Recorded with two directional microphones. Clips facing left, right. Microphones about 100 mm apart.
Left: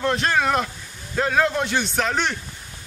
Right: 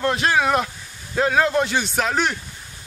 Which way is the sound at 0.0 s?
5° right (ahead or behind).